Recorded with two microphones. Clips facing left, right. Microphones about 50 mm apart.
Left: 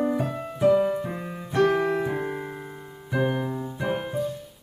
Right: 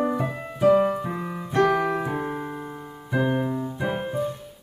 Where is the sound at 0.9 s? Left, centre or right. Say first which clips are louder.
Right 1 dB; centre.